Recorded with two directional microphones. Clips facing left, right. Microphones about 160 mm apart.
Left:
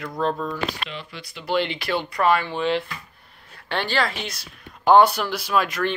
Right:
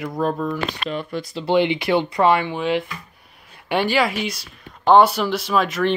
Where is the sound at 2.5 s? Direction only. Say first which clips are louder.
Right 1 dB; 5° right (ahead or behind).